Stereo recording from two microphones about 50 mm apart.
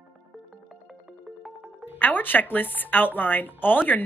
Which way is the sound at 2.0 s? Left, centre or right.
Left.